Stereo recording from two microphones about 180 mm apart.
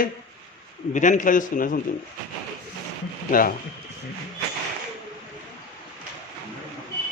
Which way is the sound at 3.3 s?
50° left (ahead or behind).